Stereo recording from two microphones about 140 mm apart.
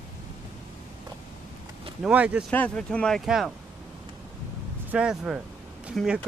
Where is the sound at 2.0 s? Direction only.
10° right (ahead or behind).